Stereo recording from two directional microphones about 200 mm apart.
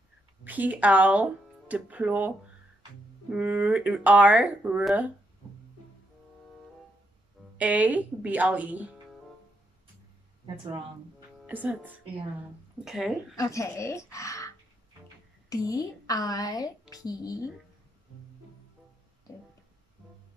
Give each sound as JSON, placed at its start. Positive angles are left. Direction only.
{"t": 0.4, "sound": "speech", "side_deg": -10}
{"t": 7.5, "sound": "speech", "side_deg": -5}
{"t": 10.4, "sound": "speech", "side_deg": -25}
{"t": 11.4, "sound": "speech", "side_deg": -10}
{"t": 13.4, "sound": "a woman's voice", "side_deg": 15}
{"t": 15.5, "sound": "a woman's voice", "side_deg": 20}